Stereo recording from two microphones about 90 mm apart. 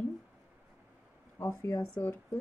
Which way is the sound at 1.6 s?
35° left (ahead or behind).